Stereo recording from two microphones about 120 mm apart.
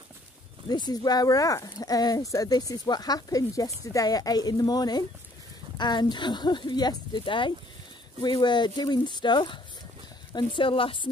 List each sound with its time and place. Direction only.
0.7 s speech: 35° left (ahead or behind)